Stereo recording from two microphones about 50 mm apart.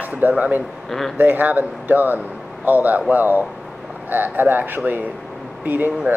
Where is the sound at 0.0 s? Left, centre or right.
Right.